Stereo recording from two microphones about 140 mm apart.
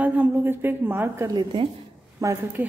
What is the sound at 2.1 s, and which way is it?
Speech, 25° right (ahead or behind).